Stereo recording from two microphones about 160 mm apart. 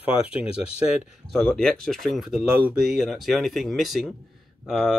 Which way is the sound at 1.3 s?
5° left (ahead or behind).